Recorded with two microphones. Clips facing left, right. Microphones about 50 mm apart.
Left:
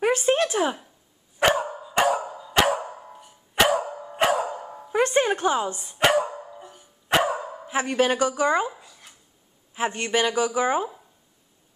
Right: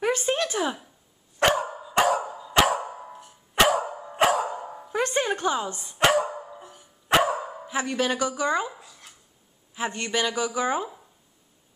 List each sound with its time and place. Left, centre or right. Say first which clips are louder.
0.0 s a sound: left 4 dB; centre
1.4 s dog: left 1 dB; centre
4.9 s a sound: left 4 dB; left
5.4 s speech: left 3 dB; centre
5.9 s dog: even; centre
7.7 s speech: left 4 dB; left
8.7 s speech: even; centre
9.8 s speech: left 3 dB; left